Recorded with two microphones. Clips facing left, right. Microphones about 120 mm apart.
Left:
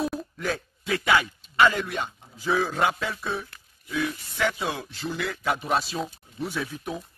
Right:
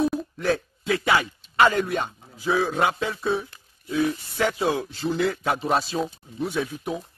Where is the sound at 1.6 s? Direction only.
45° right (ahead or behind).